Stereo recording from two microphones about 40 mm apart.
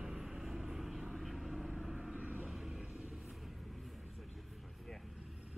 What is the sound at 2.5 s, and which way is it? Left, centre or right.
Vehicle, centre.